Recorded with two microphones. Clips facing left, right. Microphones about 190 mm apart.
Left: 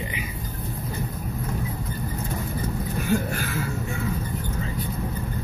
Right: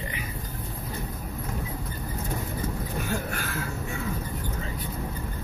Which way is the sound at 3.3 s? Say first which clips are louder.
Left 4 dB; 5° left (ahead or behind).